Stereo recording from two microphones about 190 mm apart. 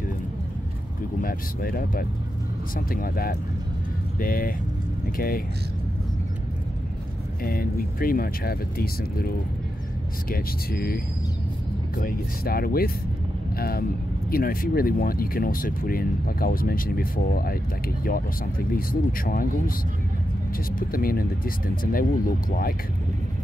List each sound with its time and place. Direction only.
1.2 s speech: 50° left (ahead or behind)
7.4 s speech: 50° left (ahead or behind)
10.3 s speech: 55° left (ahead or behind)
12.0 s speech: 50° left (ahead or behind)
20.9 s speech: 50° left (ahead or behind)